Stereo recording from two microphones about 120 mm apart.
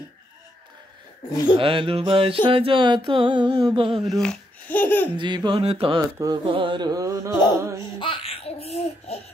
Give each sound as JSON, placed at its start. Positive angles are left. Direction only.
{"t": 1.6, "sound": "mantra", "side_deg": -50}
{"t": 4.0, "sound": "speech", "side_deg": 5}
{"t": 5.1, "sound": "a sound", "side_deg": -40}
{"t": 5.6, "sound": "mantra", "side_deg": -55}
{"t": 6.1, "sound": "a sound", "side_deg": -35}
{"t": 7.8, "sound": "laughter", "side_deg": 45}